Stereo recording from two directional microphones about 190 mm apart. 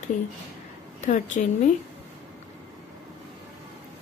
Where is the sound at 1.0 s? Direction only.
40° left (ahead or behind).